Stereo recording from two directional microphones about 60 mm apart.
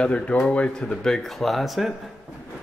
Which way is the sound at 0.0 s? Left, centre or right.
Centre.